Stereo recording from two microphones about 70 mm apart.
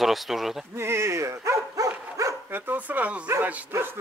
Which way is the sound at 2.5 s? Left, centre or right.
Right.